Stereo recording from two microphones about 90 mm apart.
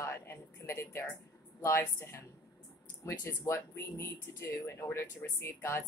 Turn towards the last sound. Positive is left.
turn(degrees=25)  # may be behind; listen again after turning